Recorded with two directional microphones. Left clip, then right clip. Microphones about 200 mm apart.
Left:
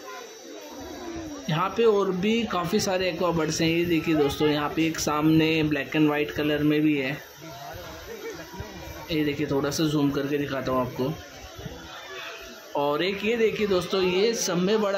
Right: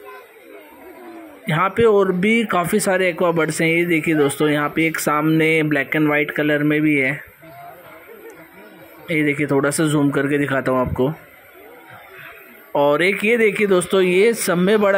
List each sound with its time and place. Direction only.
1.5 s speech: 20° right (ahead or behind)
9.1 s speech: 25° right (ahead or behind)
12.7 s speech: 25° right (ahead or behind)